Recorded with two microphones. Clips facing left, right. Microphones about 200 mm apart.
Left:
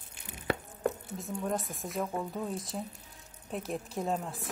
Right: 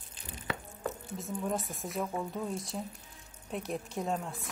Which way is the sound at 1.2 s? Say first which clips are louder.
Left 1 dB; centre (ahead or behind).